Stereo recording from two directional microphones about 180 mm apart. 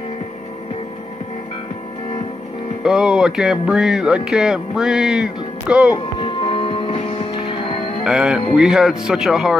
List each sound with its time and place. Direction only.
2.8 s speech: 5° right (ahead or behind)
6.1 s music: 30° left (ahead or behind)
8.0 s speech: centre (ahead or behind)